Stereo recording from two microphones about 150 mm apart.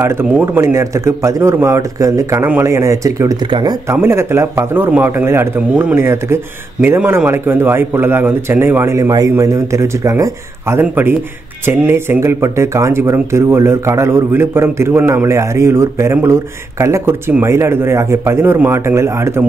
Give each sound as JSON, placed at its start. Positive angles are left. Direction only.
{"t": 0.0, "sound": "a man's voice", "side_deg": -15}
{"t": 3.9, "sound": "speech", "side_deg": -15}